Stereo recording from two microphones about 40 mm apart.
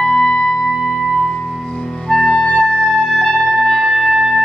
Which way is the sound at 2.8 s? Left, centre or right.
Centre.